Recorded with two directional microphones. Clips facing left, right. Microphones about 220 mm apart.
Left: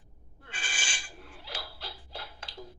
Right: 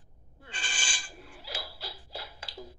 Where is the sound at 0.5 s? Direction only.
5° left (ahead or behind).